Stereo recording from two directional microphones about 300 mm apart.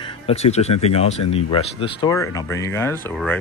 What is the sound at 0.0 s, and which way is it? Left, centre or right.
Speech, centre.